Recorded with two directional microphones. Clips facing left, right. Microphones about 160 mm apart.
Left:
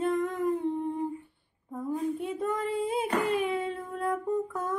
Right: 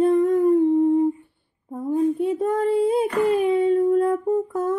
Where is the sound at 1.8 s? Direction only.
35° right (ahead or behind).